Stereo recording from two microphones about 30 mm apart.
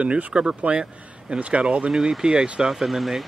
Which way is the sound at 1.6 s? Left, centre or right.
Right.